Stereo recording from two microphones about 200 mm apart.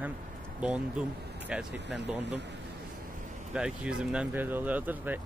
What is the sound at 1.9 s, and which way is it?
Speech, 60° right (ahead or behind).